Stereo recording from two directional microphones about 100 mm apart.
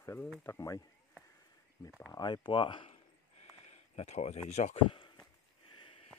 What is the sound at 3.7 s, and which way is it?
A man's voice, 90° left.